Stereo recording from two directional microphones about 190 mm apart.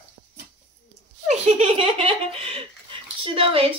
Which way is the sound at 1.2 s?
35° right (ahead or behind).